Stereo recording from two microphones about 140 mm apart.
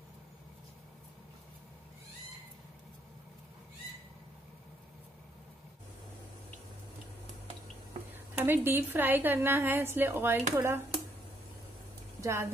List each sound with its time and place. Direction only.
8.1 s a woman's voice: 15° right (ahead or behind)
12.2 s a woman's voice: 20° right (ahead or behind)